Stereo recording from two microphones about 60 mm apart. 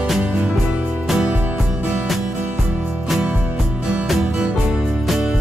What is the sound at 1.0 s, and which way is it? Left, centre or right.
Music, centre.